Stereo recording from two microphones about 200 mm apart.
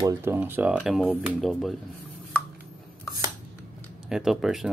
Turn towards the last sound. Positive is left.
turn(degrees=0)  # may be behind; listen again after turning